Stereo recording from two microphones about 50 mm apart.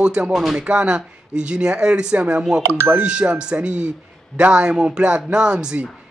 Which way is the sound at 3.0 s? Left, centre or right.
Right.